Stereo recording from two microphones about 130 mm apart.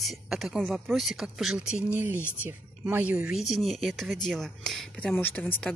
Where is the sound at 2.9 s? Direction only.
10° right (ahead or behind).